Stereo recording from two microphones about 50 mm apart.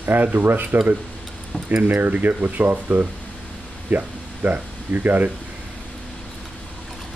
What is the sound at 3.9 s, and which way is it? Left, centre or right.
Speech, right.